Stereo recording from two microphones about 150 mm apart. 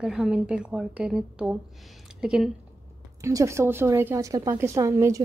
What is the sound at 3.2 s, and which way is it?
A woman's voice, 20° right (ahead or behind).